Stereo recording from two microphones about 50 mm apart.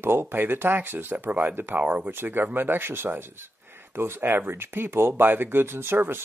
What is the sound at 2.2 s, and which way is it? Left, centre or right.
Speech, right.